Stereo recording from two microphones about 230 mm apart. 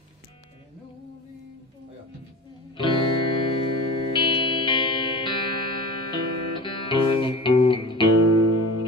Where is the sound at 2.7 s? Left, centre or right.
Left.